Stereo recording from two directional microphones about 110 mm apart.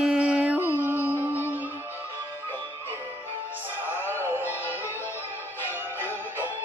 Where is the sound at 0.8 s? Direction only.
15° right (ahead or behind).